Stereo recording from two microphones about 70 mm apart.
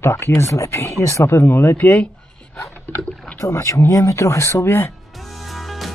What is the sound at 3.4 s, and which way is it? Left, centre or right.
Speech, left.